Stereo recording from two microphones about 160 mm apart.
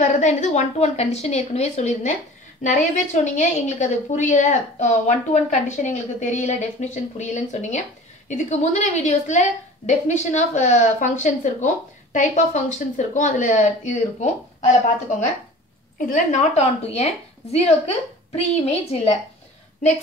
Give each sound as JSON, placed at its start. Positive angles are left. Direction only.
{"t": 0.0, "sound": "a woman's voice", "side_deg": 50}
{"t": 3.3, "sound": "a woman's voice", "side_deg": 50}
{"t": 16.1, "sound": "a woman's voice", "side_deg": 50}